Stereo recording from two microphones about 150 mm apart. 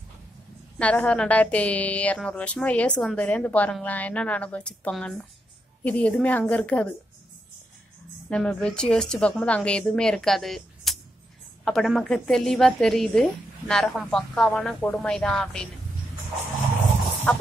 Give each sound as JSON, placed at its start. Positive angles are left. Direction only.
{"t": 0.7, "sound": "a woman's voice", "side_deg": 10}
{"t": 8.3, "sound": "a woman's voice", "side_deg": 10}
{"t": 17.3, "sound": "a woman's voice", "side_deg": 5}